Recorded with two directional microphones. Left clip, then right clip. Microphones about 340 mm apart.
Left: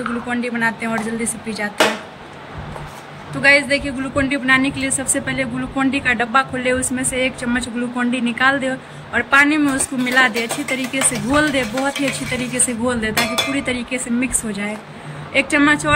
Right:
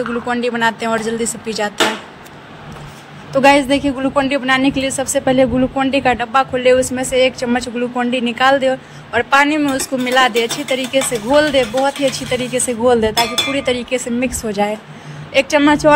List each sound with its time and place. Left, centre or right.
0.3 s a woman's voice: centre
3.4 s a woman's voice: centre